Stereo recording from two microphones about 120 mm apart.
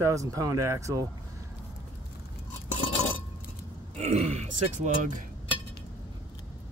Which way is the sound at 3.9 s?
70° right (ahead or behind).